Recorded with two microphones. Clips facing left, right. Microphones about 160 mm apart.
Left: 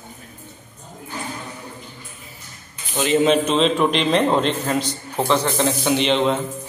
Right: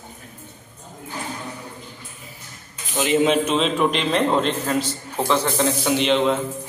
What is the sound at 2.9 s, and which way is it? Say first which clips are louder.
A man's voice: left 1 dB; 10° right (ahead or behind).